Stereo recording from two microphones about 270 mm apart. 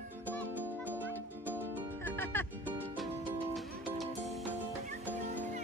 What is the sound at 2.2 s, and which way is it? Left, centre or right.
Music, centre.